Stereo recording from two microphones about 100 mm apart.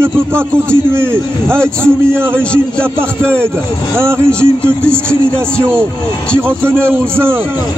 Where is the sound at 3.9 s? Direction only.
25° right (ahead or behind).